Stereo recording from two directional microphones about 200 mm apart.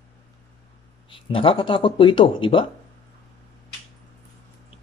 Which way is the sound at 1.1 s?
25° left (ahead or behind).